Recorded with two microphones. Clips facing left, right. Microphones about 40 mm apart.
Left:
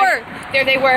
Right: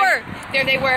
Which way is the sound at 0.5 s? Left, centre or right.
Left.